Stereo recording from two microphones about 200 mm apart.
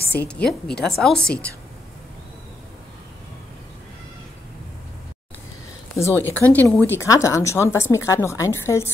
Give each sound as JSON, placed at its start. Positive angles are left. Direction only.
{"t": 0.2, "sound": "a woman's voice", "side_deg": 5}
{"t": 5.9, "sound": "speech", "side_deg": 10}